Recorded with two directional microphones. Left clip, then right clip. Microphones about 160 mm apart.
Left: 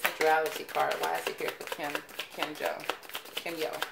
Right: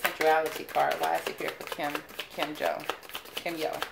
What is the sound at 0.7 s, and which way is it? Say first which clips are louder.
Speech: right 4 dB; 15° right (ahead or behind).